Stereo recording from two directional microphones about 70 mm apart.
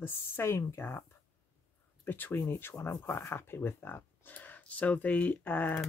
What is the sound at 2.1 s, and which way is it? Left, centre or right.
Speech, left.